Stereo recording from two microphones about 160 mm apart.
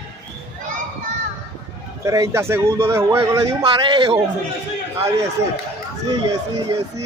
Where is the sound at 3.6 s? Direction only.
30° right (ahead or behind).